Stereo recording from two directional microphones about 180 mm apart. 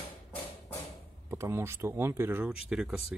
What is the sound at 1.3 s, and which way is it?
Speech, 15° right (ahead or behind).